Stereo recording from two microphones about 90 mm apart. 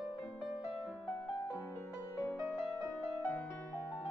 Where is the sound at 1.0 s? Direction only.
20° left (ahead or behind).